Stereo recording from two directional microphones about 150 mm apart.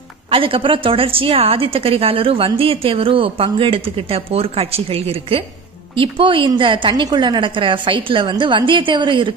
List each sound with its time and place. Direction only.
0.3 s a woman's voice: 35° right (ahead or behind)